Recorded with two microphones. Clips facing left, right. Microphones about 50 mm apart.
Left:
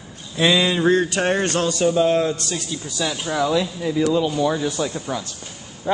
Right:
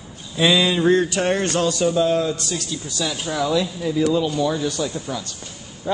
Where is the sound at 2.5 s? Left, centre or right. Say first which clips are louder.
Even; centre.